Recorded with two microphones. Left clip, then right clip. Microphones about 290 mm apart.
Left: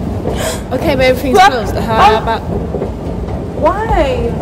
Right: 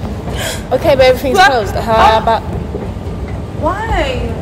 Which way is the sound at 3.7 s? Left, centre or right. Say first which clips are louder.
Left 1 dB; left.